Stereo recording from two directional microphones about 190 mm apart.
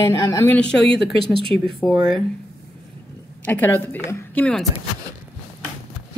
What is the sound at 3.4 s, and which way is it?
A woman's voice, 10° left (ahead or behind).